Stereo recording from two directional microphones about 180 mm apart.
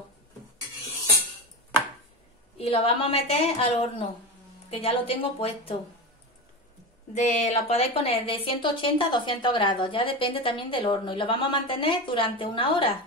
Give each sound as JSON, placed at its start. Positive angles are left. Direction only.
{"t": 2.6, "sound": "a woman's voice", "side_deg": 30}
{"t": 7.2, "sound": "a woman's voice", "side_deg": 40}